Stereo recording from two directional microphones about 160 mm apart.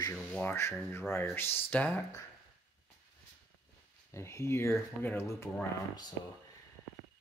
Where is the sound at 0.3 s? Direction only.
10° left (ahead or behind).